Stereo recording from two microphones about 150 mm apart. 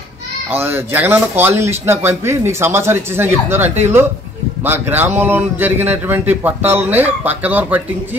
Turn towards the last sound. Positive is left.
turn(degrees=-10)  # may be behind; listen again after turning